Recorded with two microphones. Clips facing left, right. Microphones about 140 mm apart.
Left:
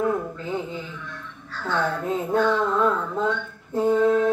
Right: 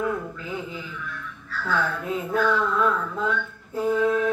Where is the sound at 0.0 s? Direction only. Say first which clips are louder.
Left 3 dB; 30° left (ahead or behind).